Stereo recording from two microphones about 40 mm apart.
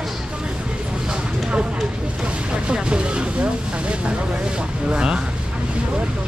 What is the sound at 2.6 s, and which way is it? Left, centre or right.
Speech, right.